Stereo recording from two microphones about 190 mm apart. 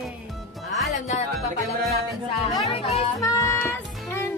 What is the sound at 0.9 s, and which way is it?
Speech, 35° left (ahead or behind).